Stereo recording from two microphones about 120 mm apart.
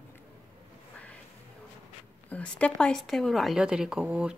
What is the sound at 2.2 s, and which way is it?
Speech, 10° left (ahead or behind).